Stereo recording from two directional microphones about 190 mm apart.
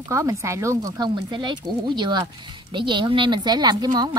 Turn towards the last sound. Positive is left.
turn(degrees=-20)  # may be behind; listen again after turning